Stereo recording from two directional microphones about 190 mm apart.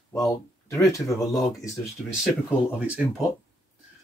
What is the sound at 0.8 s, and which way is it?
Speech, 15° left (ahead or behind).